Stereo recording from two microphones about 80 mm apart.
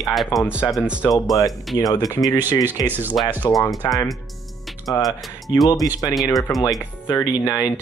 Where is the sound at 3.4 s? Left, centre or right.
Left.